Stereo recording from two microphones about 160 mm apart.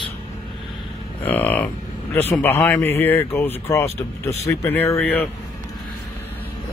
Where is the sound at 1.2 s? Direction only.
10° left (ahead or behind).